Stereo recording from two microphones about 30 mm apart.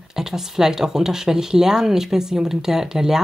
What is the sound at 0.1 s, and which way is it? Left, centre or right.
Speech, centre.